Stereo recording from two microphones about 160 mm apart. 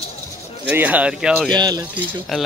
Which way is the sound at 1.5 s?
25° right (ahead or behind).